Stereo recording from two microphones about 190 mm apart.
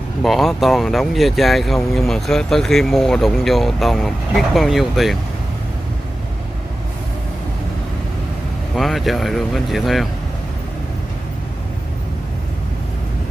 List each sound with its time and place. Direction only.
0.2 s speech: centre (ahead or behind)
8.7 s speech: centre (ahead or behind)